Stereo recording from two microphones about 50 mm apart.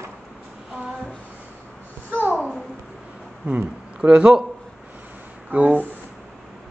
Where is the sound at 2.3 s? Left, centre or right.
Centre.